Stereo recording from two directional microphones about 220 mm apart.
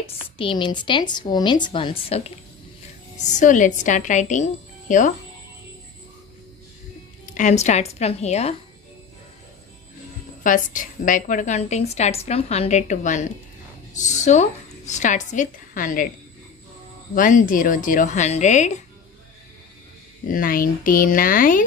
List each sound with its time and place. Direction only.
0.0 s a woman's voice: 25° left (ahead or behind)
7.3 s a woman's voice: 35° left (ahead or behind)
10.4 s a woman's voice: 35° left (ahead or behind)
17.1 s a woman's voice: 35° left (ahead or behind)
20.2 s a woman's voice: 40° left (ahead or behind)